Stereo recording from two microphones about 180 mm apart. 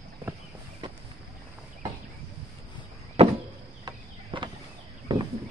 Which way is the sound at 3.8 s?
25° right (ahead or behind).